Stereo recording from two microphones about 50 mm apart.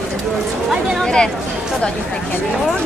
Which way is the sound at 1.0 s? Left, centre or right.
Centre.